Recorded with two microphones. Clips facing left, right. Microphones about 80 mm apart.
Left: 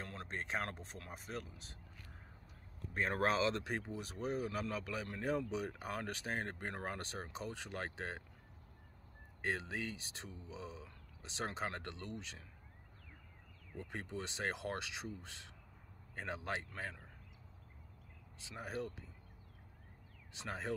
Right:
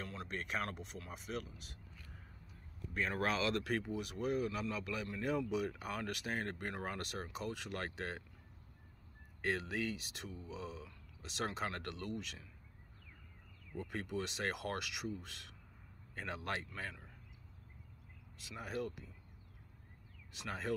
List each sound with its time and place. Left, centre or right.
0.0 s speech: left
2.9 s speech: left
9.4 s speech: left
13.7 s speech: left
18.4 s speech: left
20.3 s speech: left